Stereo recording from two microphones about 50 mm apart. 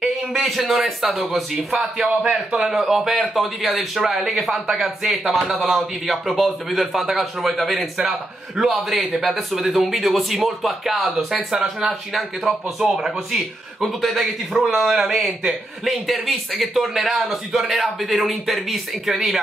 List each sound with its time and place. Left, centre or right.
0.0 s a man's voice: centre
2.2 s a man's voice: centre
2.7 s a man's voice: centre